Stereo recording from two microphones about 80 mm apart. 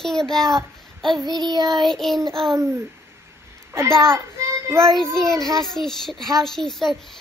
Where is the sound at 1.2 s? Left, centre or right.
Right.